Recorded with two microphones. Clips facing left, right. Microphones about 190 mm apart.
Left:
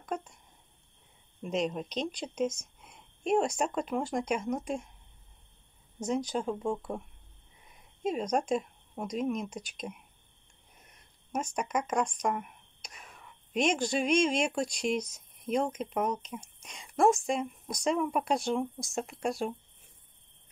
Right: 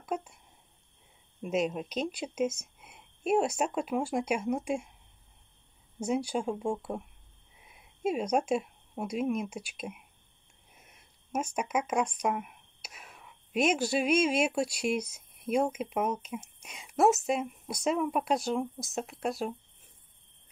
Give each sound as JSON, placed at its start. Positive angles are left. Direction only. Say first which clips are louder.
{"t": 0.0, "sound": "a sound", "louder": "right 2 dB", "side_deg": -5}
{"t": 1.4, "sound": "speech", "louder": "right 1 dB", "side_deg": -5}
{"t": 5.9, "sound": "speech", "louder": "right 1 dB", "side_deg": -10}